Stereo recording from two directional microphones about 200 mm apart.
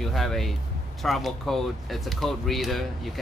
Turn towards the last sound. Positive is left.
turn(degrees=0)  # may be behind; listen again after turning